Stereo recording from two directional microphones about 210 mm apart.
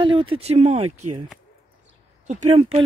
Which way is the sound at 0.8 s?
90° right.